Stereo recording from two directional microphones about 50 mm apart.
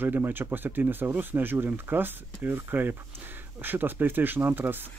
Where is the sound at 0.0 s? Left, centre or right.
Right.